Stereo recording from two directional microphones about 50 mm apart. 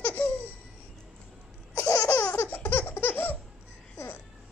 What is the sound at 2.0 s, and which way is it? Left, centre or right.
Laughter, left.